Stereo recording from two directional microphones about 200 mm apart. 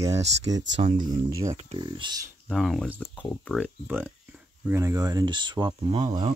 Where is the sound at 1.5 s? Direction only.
30° right (ahead or behind).